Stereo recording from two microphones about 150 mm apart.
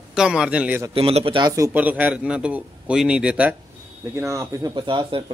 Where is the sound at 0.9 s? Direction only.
40° right (ahead or behind).